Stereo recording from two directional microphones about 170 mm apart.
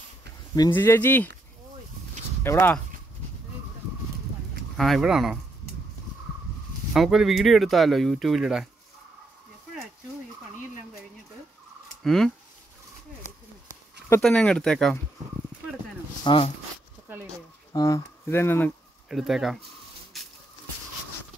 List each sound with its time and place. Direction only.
0.7 s speech: 15° left (ahead or behind)
2.4 s speech: 15° left (ahead or behind)
4.7 s speech: centre (ahead or behind)
6.9 s speech: 5° right (ahead or behind)
12.0 s speech: centre (ahead or behind)
14.2 s speech: 5° left (ahead or behind)
16.3 s speech: 30° left (ahead or behind)
17.7 s speech: 20° left (ahead or behind)
19.0 s speech: centre (ahead or behind)
20.1 s a sound: centre (ahead or behind)